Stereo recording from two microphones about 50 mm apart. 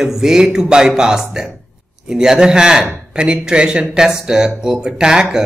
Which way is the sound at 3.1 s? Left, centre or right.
Centre.